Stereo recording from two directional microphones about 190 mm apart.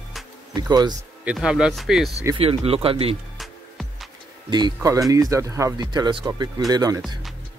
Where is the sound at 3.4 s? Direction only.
Centre (ahead or behind).